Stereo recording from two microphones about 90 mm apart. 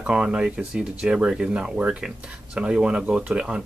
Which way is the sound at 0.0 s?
10° right (ahead or behind).